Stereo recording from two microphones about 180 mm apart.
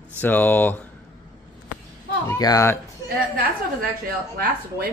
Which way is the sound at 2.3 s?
20° left (ahead or behind).